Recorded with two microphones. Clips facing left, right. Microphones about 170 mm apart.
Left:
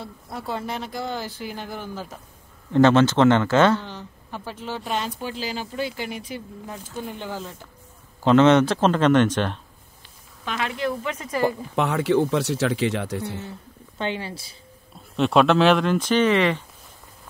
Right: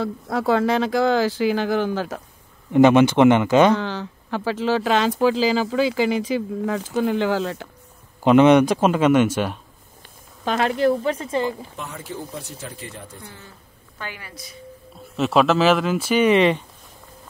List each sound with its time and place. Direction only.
0.0 s speech: 90° right
2.7 s speech: 15° right (ahead or behind)
3.8 s speech: 90° right
8.2 s speech: 15° right (ahead or behind)
10.4 s speech: 40° right (ahead or behind)
11.4 s speech: 70° left (ahead or behind)
13.9 s speech: 25° left (ahead or behind)
15.1 s speech: centre (ahead or behind)